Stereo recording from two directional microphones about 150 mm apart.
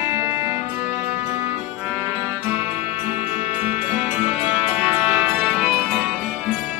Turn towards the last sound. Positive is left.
turn(degrees=-5)  # may be behind; listen again after turning